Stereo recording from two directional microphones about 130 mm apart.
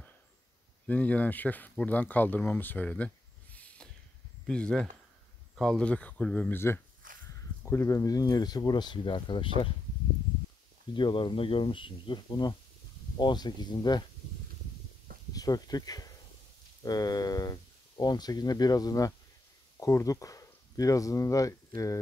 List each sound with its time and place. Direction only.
0.8 s speech: 10° left (ahead or behind)
3.5 s a sound: 10° left (ahead or behind)
4.5 s speech: 5° left (ahead or behind)
7.0 s a sound: 90° right
7.6 s speech: 20° left (ahead or behind); by 9.5 s 40° left (ahead or behind)
10.9 s speech: 40° left (ahead or behind)
15.3 s speech: 30° left (ahead or behind)